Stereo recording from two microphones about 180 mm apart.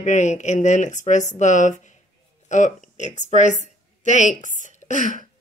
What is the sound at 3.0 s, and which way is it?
A woman's voice, 40° left (ahead or behind).